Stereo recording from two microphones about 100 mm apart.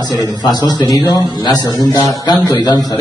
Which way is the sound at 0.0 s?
40° left (ahead or behind).